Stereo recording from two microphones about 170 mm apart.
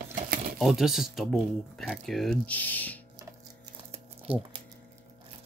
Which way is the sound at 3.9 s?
35° right (ahead or behind).